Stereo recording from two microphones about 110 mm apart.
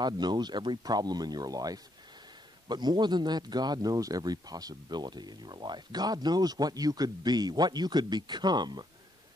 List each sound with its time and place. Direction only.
0.0 s speech: 40° right (ahead or behind)